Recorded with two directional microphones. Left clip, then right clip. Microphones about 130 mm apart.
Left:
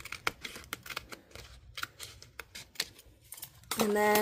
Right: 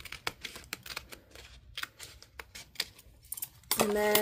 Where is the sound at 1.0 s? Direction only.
20° left (ahead or behind).